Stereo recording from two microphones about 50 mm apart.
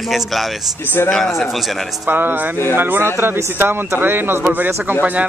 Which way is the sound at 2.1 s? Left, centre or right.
Right.